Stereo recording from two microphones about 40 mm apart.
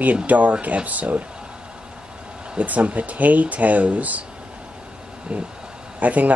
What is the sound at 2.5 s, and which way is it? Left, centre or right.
Speech, right.